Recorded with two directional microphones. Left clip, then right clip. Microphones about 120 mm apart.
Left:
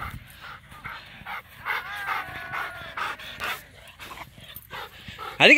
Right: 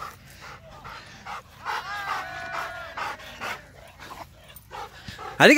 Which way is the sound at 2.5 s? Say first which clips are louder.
Left 3 dB; 80° left.